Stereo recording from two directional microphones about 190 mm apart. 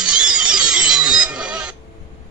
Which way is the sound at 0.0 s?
5° right (ahead or behind).